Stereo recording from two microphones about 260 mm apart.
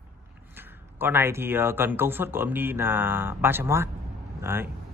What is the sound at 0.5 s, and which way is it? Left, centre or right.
Speech, centre.